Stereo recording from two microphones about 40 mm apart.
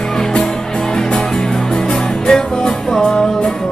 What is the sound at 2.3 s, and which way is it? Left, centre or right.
Music, centre.